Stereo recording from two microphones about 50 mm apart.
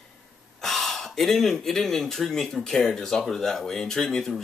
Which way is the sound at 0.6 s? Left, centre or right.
Centre.